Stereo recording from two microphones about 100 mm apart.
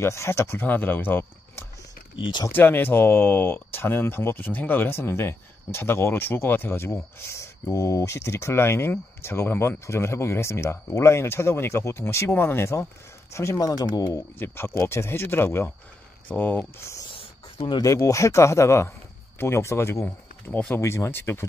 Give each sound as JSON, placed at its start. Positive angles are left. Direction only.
{"t": 0.0, "sound": "speech", "side_deg": 25}
{"t": 14.4, "sound": "speech", "side_deg": 25}
{"t": 17.1, "sound": "a sound", "side_deg": 60}
{"t": 17.7, "sound": "speech", "side_deg": 35}
{"t": 20.5, "sound": "speech", "side_deg": 15}
{"t": 20.8, "sound": "speech", "side_deg": 25}